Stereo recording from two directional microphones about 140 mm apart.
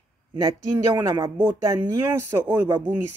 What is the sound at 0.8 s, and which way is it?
Speech, 20° right (ahead or behind).